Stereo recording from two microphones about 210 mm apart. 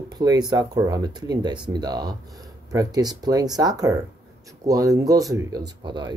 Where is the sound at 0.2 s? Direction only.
20° right (ahead or behind).